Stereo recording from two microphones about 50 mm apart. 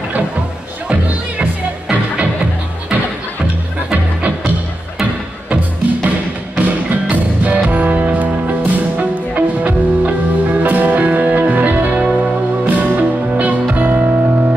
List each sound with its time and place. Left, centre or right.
6.0 s music: right
11.9 s music: right